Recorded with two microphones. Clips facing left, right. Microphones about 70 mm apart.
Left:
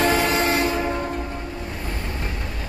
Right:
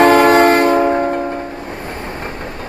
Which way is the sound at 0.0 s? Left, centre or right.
Right.